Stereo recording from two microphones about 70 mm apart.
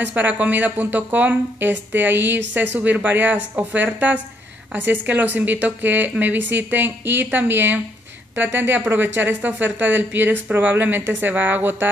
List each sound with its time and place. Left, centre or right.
0.1 s speech: right